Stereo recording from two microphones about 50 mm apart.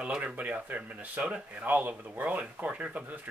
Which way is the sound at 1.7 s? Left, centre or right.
Right.